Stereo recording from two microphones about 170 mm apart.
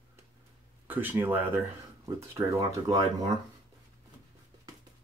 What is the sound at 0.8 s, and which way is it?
Speech, 10° right (ahead or behind).